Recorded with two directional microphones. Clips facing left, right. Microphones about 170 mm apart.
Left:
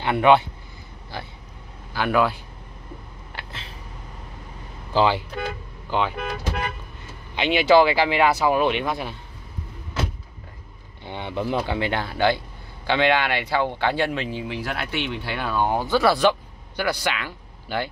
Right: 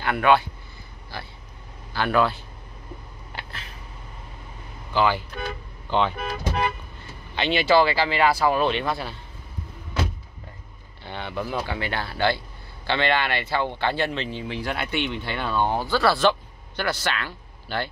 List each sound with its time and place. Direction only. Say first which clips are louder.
0.0 s speech: left 3 dB; 20° left (ahead or behind)
3.4 s cat: even; centre (ahead or behind)
4.9 s speech: left 2 dB; 25° left (ahead or behind)
5.9 s speech: right 1 dB; 5° left (ahead or behind)
7.3 s speech: left 3 dB; 15° left (ahead or behind)
11.1 s speech: left 3 dB; 20° left (ahead or behind)